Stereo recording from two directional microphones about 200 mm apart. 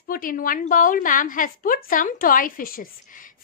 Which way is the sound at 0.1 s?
45° left (ahead or behind).